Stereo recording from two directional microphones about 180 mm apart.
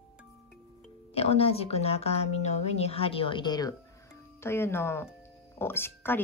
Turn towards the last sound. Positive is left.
turn(degrees=10)  # may be behind; listen again after turning